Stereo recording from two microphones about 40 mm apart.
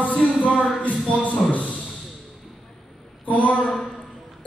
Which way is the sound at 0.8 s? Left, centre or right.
Left.